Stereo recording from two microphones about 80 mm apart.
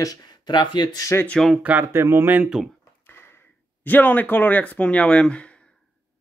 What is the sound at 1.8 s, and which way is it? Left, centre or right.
Speech, right.